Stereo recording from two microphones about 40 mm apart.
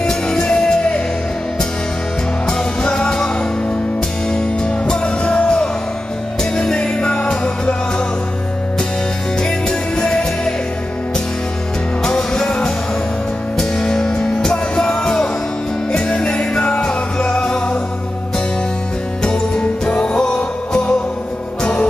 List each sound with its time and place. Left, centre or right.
0.0 s music: centre
2.4 s music: left
4.3 s music: left
9.4 s music: centre
12.0 s music: centre
19.6 s music: left